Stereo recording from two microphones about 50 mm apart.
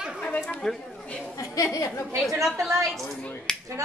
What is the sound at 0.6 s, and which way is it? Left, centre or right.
Speech, centre.